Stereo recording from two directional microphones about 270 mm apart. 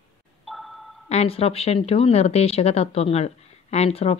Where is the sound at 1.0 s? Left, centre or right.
Left.